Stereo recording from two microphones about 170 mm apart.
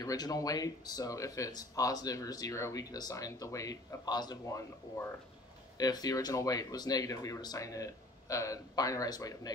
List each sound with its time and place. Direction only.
0.0 s speech: 20° left (ahead or behind)